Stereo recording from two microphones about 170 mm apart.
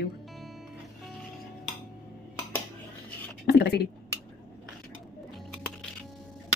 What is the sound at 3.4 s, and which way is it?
Speech, 75° left (ahead or behind).